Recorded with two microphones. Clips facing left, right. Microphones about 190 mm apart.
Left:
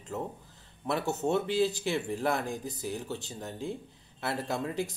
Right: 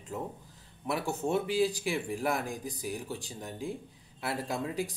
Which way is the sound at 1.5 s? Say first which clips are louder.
Left 1 dB; 10° right (ahead or behind).